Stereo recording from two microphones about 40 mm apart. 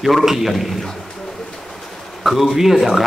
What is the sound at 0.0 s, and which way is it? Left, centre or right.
Speech, centre.